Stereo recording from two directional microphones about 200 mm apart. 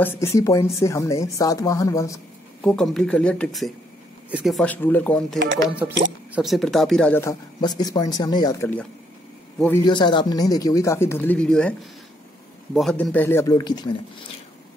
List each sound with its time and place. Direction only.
0.0 s speech: 10° left (ahead or behind)
2.6 s speech: 5° left (ahead or behind)
9.8 s speech: 20° left (ahead or behind); by 11.7 s 5° left (ahead or behind)
12.7 s speech: 5° left (ahead or behind); by 13.9 s 20° left (ahead or behind)